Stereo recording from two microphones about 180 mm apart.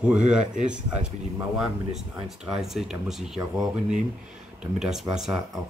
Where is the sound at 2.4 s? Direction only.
Centre (ahead or behind).